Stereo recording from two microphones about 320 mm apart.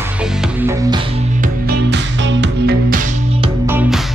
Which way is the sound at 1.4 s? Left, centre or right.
Right.